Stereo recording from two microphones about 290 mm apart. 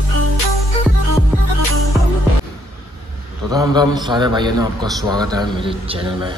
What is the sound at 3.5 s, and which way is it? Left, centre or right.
A man's voice, centre.